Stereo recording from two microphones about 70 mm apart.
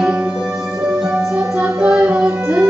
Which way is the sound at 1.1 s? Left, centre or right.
Centre.